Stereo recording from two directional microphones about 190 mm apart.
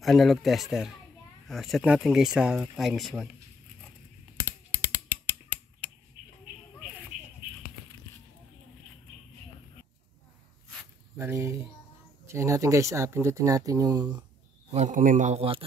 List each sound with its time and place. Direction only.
0.0 s speech: centre (ahead or behind)
4.5 s a sound: 10° right (ahead or behind)
11.1 s speech: 15° right (ahead or behind)
14.7 s a man's voice: 40° right (ahead or behind)